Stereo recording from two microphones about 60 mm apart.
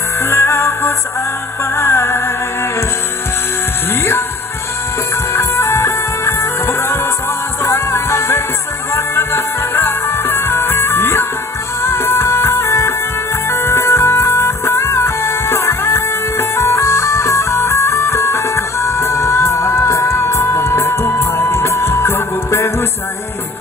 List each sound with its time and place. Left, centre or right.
0.2 s music: left
5.3 s music: left